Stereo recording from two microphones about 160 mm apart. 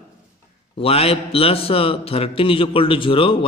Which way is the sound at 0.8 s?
35° left (ahead or behind).